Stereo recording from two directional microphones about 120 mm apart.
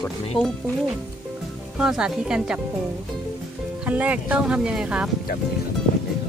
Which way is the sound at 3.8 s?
10° right (ahead or behind).